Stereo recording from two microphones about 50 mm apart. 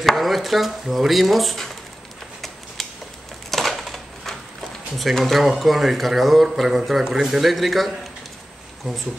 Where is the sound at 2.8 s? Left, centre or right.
Centre.